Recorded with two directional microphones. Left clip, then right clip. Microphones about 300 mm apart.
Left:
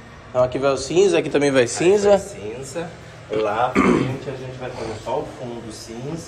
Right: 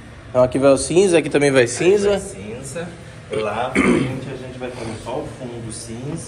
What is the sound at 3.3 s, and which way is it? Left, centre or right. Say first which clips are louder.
Speech: left 1 dB; centre.